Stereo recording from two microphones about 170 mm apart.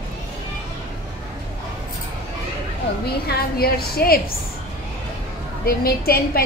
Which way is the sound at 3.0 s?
65° left (ahead or behind).